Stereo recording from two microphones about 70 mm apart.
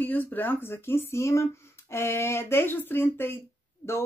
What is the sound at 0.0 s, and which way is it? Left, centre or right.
Speech, left.